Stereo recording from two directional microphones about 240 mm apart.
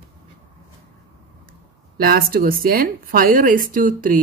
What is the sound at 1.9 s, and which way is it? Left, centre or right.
Speech, right.